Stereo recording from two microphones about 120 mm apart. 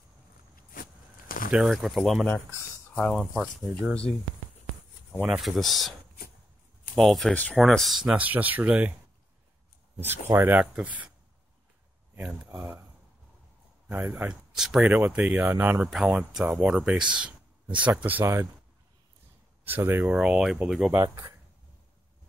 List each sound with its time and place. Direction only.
1.5 s speech: 5° right (ahead or behind)
5.3 s speech: centre (ahead or behind)
7.0 s speech: centre (ahead or behind)
9.9 s speech: 20° right (ahead or behind)
12.2 s speech: 10° right (ahead or behind)
14.0 s speech: 5° right (ahead or behind)
14.9 s speech: 15° right (ahead or behind)
19.6 s speech: 20° right (ahead or behind)
20.1 s speech: 10° right (ahead or behind)
20.9 s speech: 25° right (ahead or behind)